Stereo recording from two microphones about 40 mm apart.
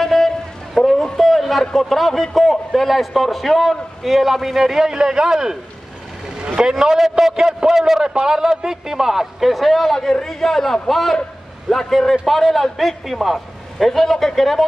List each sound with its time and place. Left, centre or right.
0.0 s a sound: centre
1.6 s a man's voice: centre
6.6 s a man's voice: centre